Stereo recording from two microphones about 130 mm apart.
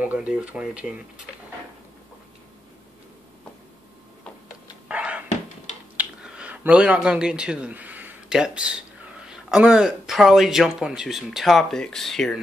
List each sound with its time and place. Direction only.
0.0 s speech: 10° right (ahead or behind)
4.8 s a sound: 10° right (ahead or behind)
5.9 s speech: 10° right (ahead or behind)